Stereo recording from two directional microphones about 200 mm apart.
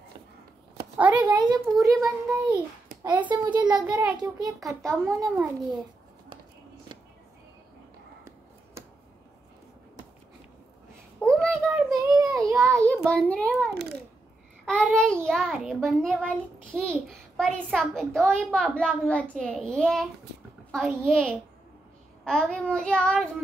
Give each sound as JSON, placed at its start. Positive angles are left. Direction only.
{"t": 0.9, "sound": "a child's voice", "side_deg": -5}
{"t": 1.2, "sound": "a child's voice", "side_deg": -20}
{"t": 3.8, "sound": "a child's voice", "side_deg": -5}
{"t": 4.4, "sound": "a child's voice", "side_deg": -15}
{"t": 4.8, "sound": "a child's voice", "side_deg": 0}
{"t": 11.1, "sound": "child singing", "side_deg": 5}
{"t": 12.0, "sound": "child singing", "side_deg": -15}
{"t": 13.1, "sound": "a child's voice", "side_deg": 5}